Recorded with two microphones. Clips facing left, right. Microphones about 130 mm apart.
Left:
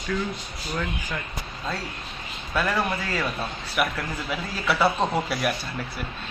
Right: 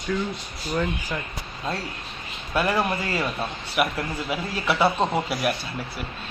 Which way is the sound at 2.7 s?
30° right (ahead or behind).